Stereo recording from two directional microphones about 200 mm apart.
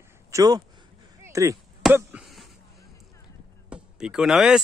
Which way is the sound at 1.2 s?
15° right (ahead or behind).